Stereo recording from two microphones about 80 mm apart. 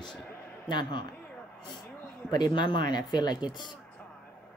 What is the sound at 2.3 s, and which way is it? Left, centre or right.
Speech, left.